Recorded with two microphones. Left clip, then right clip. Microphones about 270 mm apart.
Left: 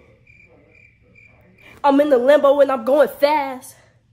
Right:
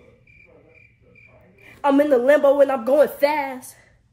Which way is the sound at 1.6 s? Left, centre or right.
Centre.